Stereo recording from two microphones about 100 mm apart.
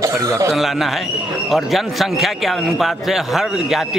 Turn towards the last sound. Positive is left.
turn(degrees=-5)  # may be behind; listen again after turning